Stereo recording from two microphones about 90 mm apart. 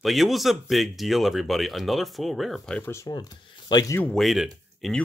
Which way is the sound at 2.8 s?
30° left (ahead or behind).